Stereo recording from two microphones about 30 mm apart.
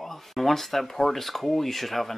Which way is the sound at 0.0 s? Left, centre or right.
Centre.